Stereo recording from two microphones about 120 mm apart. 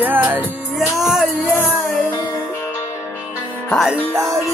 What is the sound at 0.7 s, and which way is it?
Music, centre (ahead or behind).